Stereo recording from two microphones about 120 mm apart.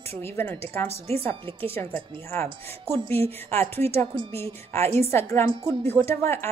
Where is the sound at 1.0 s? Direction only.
55° right (ahead or behind).